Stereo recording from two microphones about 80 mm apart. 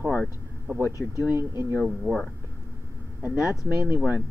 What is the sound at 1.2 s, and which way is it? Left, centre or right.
Speech, right.